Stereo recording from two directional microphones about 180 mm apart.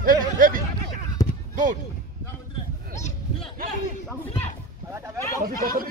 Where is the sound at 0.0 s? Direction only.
50° right (ahead or behind).